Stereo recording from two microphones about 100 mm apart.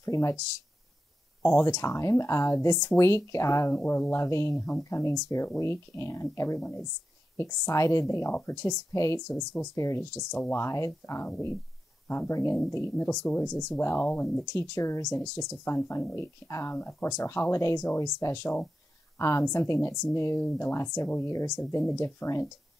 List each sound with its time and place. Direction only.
0.0 s a woman's voice: 30° left (ahead or behind)
1.4 s a woman's voice: 25° left (ahead or behind)
6.6 s speech: 15° left (ahead or behind)
7.3 s a woman's voice: 30° left (ahead or behind)
9.3 s speech: 15° left (ahead or behind)
9.8 s speech: 30° left (ahead or behind)
14.5 s a woman's voice: 30° left (ahead or behind)